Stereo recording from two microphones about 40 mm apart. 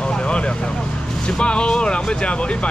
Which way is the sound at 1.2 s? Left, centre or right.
Left.